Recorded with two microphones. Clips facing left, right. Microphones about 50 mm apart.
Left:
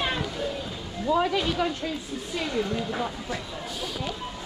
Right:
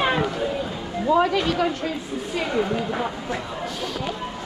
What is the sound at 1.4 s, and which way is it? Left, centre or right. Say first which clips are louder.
Speech: right 4 dB; right.